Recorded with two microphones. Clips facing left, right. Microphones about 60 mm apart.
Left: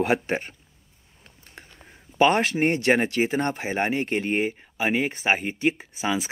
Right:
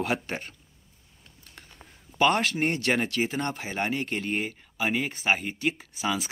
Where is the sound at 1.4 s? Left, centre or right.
Left.